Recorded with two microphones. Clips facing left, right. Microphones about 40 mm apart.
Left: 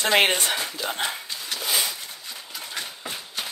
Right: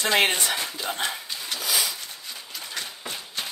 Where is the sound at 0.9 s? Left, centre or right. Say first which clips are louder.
Left 1 dB; centre.